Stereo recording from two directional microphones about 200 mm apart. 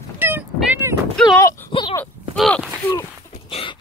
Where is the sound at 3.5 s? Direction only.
25° left (ahead or behind).